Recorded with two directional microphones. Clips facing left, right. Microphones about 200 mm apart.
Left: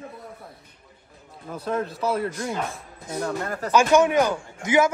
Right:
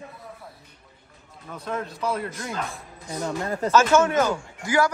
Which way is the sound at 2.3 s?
15° left (ahead or behind).